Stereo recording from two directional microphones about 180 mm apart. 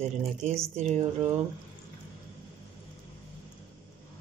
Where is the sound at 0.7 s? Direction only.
35° right (ahead or behind).